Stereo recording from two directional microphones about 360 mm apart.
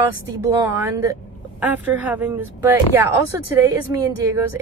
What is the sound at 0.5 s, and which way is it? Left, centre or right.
Speech, centre.